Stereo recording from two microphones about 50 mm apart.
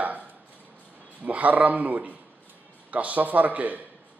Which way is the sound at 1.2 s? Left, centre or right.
Right.